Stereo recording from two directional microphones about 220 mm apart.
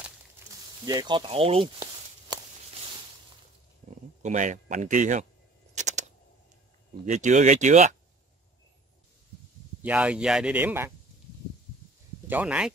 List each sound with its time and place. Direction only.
0.8 s speech: 20° right (ahead or behind)
1.8 s a sound: 20° right (ahead or behind)
4.2 s speech: 35° right (ahead or behind)
5.8 s a sound: 35° right (ahead or behind)
7.1 s speech: 35° right (ahead or behind)
9.8 s speech: 5° right (ahead or behind)
12.3 s speech: 5° right (ahead or behind)